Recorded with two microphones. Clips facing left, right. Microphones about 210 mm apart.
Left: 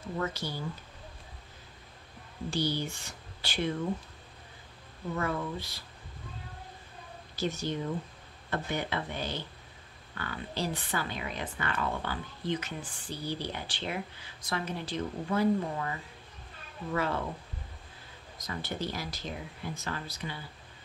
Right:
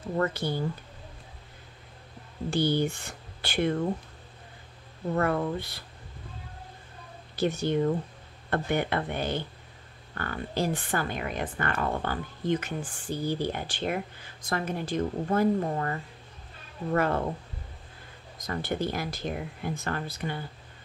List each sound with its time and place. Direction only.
0.2 s speech: 55° right (ahead or behind)
2.5 s speech: 55° right (ahead or behind)
5.1 s speech: 60° right (ahead or behind)
7.3 s speech: 60° right (ahead or behind)
18.5 s speech: 55° right (ahead or behind)